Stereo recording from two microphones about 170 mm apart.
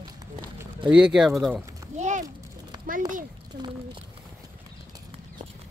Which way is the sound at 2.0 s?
45° right (ahead or behind).